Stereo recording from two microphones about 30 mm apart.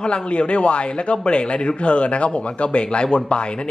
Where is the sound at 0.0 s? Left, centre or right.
Left.